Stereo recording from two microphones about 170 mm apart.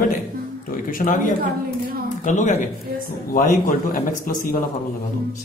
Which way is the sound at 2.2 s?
45° left (ahead or behind).